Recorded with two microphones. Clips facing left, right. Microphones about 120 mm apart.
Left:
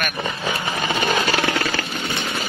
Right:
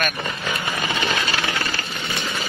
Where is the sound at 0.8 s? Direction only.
40° left (ahead or behind); by 1.8 s 60° left (ahead or behind).